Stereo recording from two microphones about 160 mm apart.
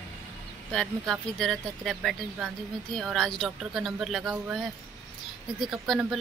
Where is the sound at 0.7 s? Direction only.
Centre (ahead or behind).